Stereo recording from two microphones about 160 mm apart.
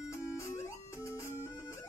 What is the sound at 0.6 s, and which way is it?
Music, 20° left (ahead or behind).